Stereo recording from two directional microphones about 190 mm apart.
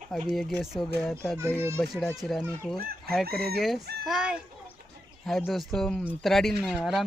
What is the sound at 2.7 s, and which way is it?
Chicken, 55° right (ahead or behind).